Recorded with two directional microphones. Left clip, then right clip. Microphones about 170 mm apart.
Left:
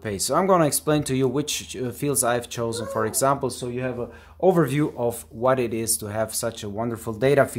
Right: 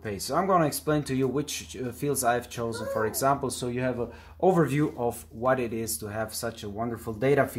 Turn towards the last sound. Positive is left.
turn(degrees=35)  # may be behind; listen again after turning